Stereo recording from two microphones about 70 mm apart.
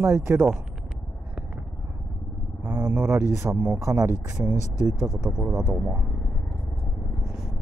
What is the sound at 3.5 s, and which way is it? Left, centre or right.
Speech, right.